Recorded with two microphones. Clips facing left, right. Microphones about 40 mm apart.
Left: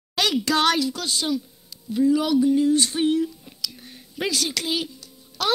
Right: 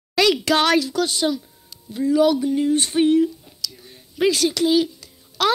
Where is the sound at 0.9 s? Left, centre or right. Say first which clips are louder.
Right 5 dB; right.